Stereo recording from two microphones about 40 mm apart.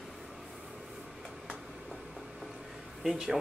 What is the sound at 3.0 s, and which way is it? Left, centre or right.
Speech, centre.